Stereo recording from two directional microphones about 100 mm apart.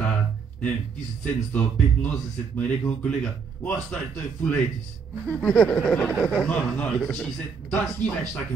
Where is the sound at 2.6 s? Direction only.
10° left (ahead or behind).